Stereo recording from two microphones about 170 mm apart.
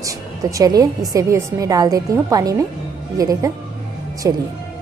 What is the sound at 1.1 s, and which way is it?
A woman's voice, 20° right (ahead or behind).